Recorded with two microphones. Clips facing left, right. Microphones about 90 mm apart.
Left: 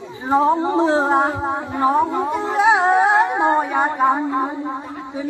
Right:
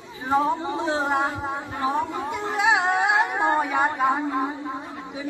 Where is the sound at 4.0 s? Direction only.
20° left (ahead or behind).